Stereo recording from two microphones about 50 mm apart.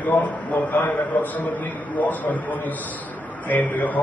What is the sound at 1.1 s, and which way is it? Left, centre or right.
A man's voice, left.